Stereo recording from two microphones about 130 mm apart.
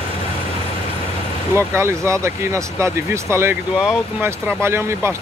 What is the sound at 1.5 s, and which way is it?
Speech, 20° right (ahead or behind).